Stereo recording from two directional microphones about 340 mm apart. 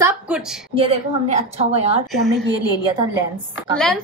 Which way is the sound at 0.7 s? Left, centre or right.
Centre.